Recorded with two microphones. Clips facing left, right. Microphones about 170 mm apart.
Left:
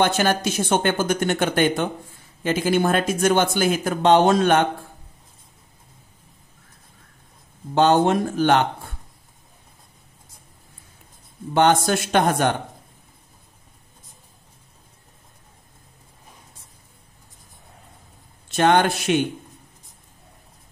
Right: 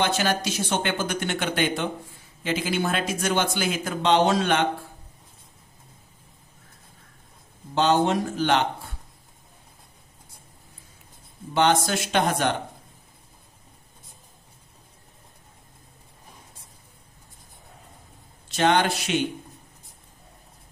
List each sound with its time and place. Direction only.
0.0 s speech: 50° left (ahead or behind)
7.7 s speech: 50° left (ahead or behind)
11.5 s speech: 50° left (ahead or behind)
18.5 s speech: 50° left (ahead or behind)